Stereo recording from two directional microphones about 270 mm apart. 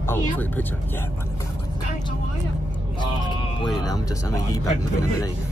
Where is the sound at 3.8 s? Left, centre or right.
Centre.